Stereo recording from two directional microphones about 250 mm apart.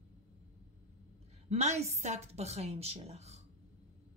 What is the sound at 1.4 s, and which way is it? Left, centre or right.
Speech, right.